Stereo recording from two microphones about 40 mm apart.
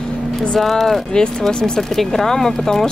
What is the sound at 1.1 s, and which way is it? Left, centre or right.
Speech, centre.